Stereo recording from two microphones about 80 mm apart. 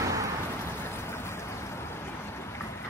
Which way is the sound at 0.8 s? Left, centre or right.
Left.